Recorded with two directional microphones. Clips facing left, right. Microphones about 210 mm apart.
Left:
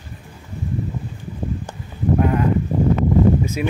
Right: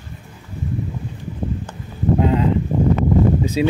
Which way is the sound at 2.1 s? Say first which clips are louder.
Right 1 dB; 20° right (ahead or behind).